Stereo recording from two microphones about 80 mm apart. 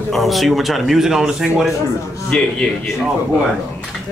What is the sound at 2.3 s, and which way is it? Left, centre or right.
Speech, centre.